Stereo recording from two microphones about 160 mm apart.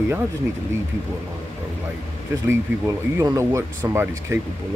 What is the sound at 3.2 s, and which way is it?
Speech, 15° right (ahead or behind).